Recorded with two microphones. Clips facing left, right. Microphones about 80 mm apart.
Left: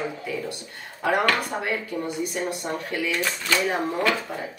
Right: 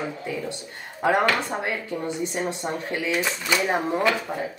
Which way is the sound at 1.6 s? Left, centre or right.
Right.